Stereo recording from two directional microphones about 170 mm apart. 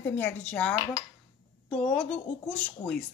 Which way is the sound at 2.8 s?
20° left (ahead or behind).